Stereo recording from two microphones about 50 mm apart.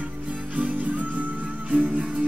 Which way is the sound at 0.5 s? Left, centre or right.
Right.